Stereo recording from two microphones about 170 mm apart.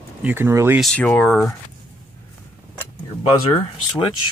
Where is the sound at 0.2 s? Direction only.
10° right (ahead or behind).